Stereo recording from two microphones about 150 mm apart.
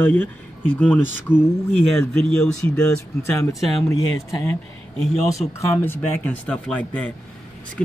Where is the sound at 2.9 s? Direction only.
20° left (ahead or behind).